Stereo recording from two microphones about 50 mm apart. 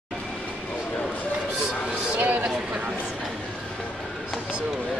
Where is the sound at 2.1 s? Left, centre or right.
Right.